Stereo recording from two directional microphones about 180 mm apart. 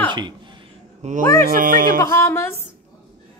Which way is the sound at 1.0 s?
45° right (ahead or behind).